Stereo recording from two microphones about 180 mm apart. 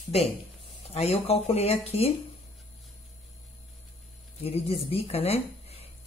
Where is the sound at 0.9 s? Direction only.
35° left (ahead or behind).